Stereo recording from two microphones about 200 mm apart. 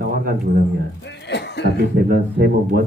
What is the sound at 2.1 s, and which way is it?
Speech, 45° right (ahead or behind).